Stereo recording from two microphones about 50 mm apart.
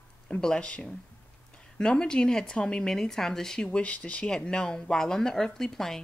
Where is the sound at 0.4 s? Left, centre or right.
Centre.